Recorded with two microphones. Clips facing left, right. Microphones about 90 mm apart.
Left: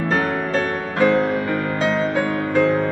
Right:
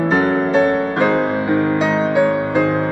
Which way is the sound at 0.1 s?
20° right (ahead or behind).